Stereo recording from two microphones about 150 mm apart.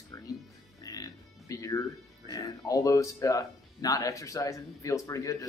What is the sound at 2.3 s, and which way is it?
Speech, 25° left (ahead or behind).